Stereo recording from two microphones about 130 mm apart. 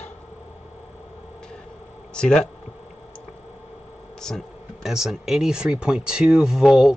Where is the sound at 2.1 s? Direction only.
5° left (ahead or behind).